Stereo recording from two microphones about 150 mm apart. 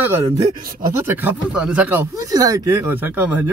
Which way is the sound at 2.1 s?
25° right (ahead or behind).